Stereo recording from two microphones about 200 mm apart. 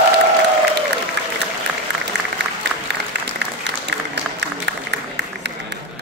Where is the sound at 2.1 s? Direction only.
60° right (ahead or behind).